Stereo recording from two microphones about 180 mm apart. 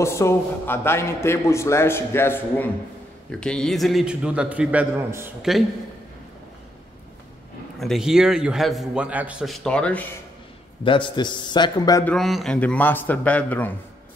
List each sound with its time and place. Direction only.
0.0 s a man's voice: 15° left (ahead or behind); by 5.3 s 15° right (ahead or behind)
7.8 s a man's voice: centre (ahead or behind)
10.8 s a man's voice: 25° left (ahead or behind)
12.0 s a man's voice: 5° left (ahead or behind)